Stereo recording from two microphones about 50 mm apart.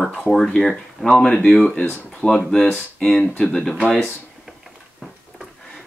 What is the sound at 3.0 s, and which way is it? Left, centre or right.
Speech, centre.